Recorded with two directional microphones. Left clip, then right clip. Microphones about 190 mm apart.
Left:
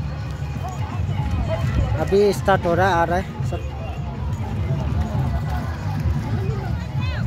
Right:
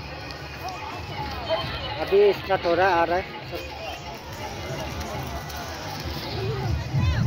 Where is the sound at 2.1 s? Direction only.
15° left (ahead or behind).